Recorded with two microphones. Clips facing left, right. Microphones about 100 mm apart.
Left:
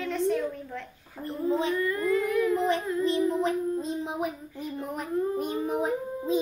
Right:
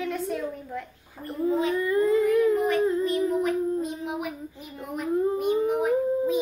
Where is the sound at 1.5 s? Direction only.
30° left (ahead or behind).